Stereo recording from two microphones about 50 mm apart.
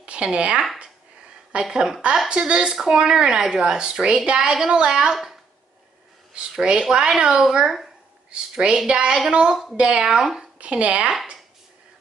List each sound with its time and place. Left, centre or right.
0.0 s speech: right
5.1 s speech: centre
6.3 s speech: centre
8.3 s speech: right
10.2 s speech: centre
10.6 s speech: right